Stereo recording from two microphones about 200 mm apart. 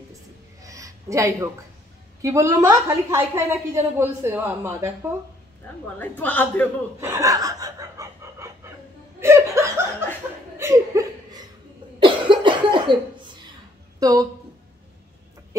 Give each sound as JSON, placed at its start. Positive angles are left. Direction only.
{"t": 0.7, "sound": "a sound", "side_deg": -15}
{"t": 2.2, "sound": "a woman's voice", "side_deg": -15}
{"t": 5.9, "sound": "a woman's voice", "side_deg": 10}
{"t": 7.0, "sound": "chuckle", "side_deg": -15}
{"t": 12.0, "sound": "cough", "side_deg": -25}
{"t": 13.9, "sound": "speech", "side_deg": -20}